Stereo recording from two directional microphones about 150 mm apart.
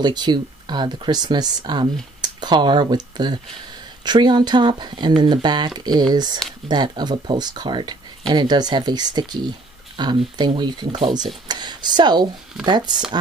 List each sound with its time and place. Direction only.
0.0 s speech: 30° right (ahead or behind)